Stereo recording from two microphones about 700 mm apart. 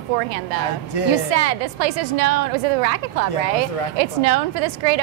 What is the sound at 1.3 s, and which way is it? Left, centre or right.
A woman's voice, right.